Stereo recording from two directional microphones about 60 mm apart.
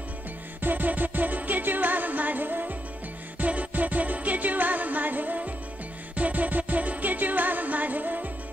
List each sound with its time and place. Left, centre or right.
0.6 s music: right